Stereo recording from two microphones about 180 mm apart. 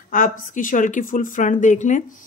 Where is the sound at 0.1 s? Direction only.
50° left (ahead or behind).